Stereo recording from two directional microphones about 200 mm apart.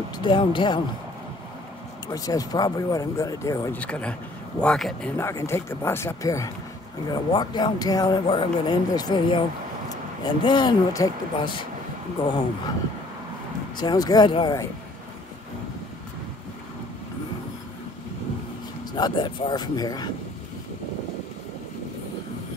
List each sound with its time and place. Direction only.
0.2 s speech: 25° left (ahead or behind)
2.1 s speech: 20° left (ahead or behind)
5.1 s speech: 15° left (ahead or behind)
13.7 s speech: 20° left (ahead or behind)
18.9 s speech: 20° left (ahead or behind)